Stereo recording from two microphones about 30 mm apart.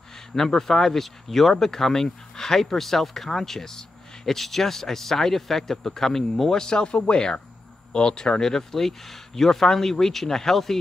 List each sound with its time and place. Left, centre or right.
0.3 s speech: centre
6.5 s speech: left
8.4 s speech: centre